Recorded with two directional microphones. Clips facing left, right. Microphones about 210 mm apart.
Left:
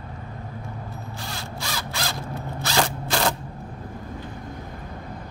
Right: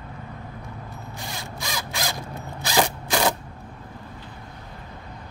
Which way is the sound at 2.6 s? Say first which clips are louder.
Right 2 dB; 15° right (ahead or behind).